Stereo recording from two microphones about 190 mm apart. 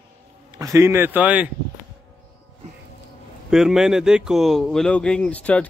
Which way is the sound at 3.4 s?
Centre (ahead or behind).